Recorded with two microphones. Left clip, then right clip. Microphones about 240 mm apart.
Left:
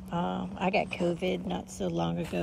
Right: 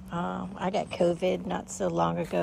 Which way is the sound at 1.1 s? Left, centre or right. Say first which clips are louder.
Right 4 dB; centre.